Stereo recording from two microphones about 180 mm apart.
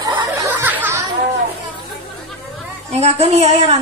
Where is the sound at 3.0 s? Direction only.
35° right (ahead or behind).